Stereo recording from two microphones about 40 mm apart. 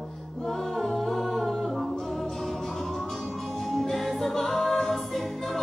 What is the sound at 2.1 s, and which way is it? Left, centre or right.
Music, centre.